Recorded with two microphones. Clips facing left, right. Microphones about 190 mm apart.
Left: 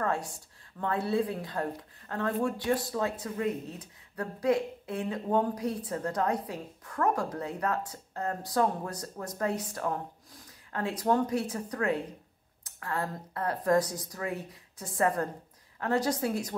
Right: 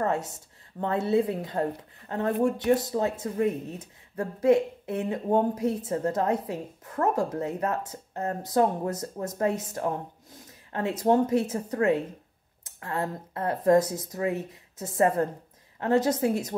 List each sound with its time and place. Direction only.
0.0 s speech: 20° right (ahead or behind)